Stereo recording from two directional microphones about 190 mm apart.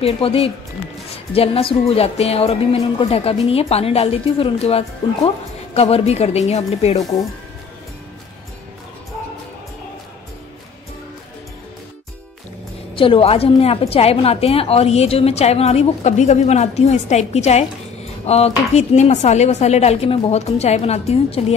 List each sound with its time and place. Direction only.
0.0 s a woman's voice: 30° left (ahead or behind)
7.0 s speech: 20° left (ahead or behind)
12.9 s a woman's voice: 30° left (ahead or behind)